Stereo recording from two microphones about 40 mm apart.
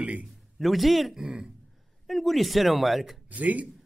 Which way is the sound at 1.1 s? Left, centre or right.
Centre.